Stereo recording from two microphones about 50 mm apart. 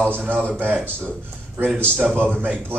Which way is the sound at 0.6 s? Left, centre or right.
Right.